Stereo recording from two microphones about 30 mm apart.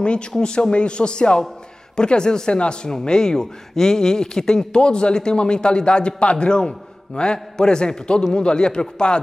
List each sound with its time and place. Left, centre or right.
0.4 s a man's voice: left
4.7 s a man's voice: left
6.3 s speech: left